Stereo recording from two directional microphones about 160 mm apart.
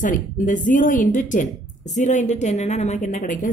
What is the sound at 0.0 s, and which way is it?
A woman's voice, 55° left (ahead or behind).